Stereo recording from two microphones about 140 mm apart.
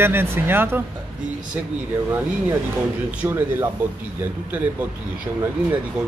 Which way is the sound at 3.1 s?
15° right (ahead or behind).